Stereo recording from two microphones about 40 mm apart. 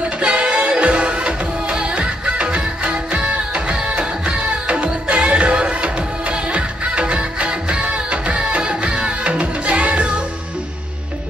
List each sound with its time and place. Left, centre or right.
0.2 s music: right